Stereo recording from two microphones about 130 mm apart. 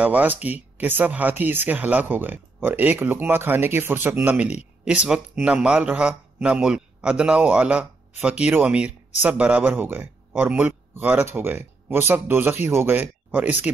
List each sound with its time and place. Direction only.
0.0 s speech: 10° right (ahead or behind)